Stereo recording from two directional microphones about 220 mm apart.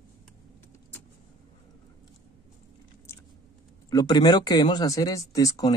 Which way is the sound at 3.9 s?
20° left (ahead or behind).